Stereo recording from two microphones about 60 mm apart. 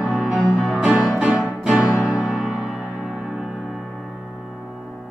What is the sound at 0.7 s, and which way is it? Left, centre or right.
Music, centre.